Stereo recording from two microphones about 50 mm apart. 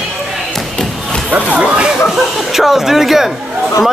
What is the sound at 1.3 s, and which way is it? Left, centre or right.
Speech, right.